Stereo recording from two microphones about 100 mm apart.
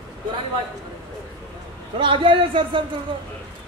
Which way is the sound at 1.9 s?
55° right (ahead or behind).